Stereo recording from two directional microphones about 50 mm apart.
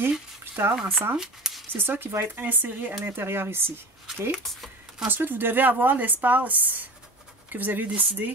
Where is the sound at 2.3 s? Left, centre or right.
Right.